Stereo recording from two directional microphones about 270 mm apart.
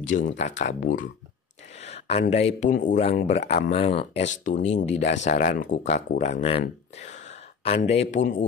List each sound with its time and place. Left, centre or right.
0.4 s speech: left